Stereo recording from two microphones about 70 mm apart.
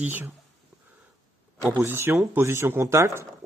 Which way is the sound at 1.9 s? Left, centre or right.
Right.